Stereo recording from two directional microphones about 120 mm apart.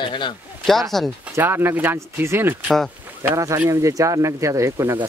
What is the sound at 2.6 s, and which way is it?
Speech, 5° left (ahead or behind).